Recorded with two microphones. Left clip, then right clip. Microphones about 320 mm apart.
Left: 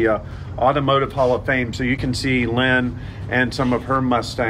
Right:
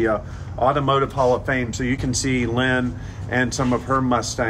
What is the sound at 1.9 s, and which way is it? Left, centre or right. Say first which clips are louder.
Speech: left 2 dB; right.